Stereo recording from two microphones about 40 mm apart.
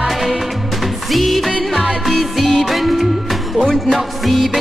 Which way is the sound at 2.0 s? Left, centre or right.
Centre.